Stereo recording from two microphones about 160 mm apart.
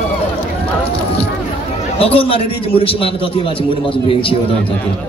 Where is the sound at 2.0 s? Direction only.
35° left (ahead or behind).